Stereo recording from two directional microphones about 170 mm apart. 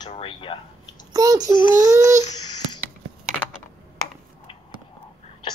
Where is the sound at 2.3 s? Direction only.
25° left (ahead or behind).